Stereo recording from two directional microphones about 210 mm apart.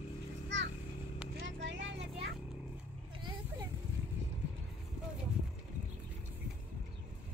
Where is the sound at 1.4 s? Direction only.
60° right (ahead or behind).